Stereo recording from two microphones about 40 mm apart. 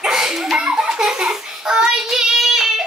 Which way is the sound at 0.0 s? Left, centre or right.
Centre.